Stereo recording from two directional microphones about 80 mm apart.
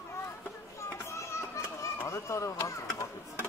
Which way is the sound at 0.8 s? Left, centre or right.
Left.